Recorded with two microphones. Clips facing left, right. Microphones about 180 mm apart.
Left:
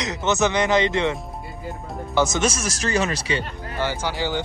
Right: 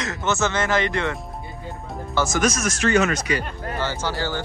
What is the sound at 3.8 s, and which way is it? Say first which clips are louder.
Speech: left 2 dB; 15° left (ahead or behind).